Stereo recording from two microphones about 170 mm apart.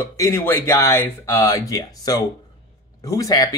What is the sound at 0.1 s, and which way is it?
Speech, 15° left (ahead or behind).